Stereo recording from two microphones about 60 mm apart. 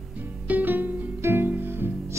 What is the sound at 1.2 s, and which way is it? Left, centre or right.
Music, right.